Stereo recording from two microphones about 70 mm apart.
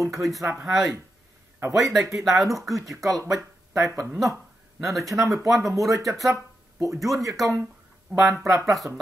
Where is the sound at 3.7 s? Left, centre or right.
Right.